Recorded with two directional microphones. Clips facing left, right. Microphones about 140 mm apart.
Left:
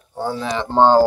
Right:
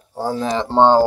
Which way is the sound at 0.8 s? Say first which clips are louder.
Even; 20° right (ahead or behind).